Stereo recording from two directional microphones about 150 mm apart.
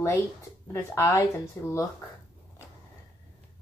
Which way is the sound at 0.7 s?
20° left (ahead or behind).